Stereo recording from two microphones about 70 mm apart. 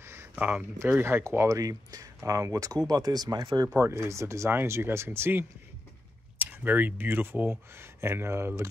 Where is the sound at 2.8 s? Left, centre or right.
Right.